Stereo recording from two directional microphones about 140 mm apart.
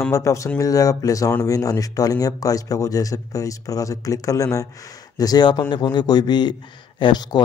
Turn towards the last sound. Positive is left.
turn(degrees=30)  # may be behind; listen again after turning